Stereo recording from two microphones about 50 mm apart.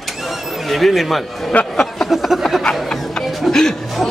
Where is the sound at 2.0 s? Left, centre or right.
Centre.